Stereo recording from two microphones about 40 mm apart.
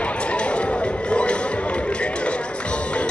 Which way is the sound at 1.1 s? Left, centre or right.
Left.